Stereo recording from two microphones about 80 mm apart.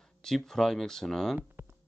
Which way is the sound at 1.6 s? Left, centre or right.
Right.